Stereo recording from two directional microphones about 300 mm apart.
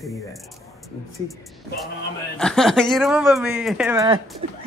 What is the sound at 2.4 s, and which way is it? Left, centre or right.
Speech, centre.